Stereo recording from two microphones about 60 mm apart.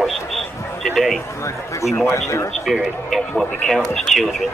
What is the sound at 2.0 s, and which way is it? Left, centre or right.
Speech, left.